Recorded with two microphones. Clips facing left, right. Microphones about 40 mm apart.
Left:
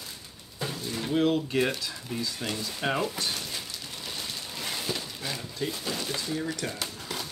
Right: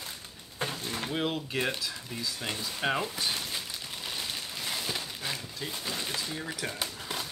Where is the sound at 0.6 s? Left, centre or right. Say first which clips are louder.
Even; right.